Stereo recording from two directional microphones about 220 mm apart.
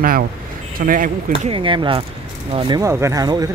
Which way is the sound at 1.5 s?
25° right (ahead or behind).